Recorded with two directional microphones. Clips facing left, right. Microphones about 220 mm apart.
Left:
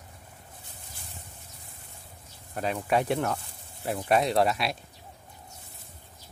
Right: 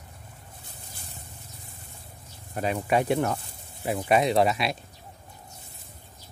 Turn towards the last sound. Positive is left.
turn(degrees=0)  # may be behind; listen again after turning